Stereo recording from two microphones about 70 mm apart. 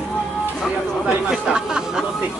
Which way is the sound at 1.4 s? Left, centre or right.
Centre.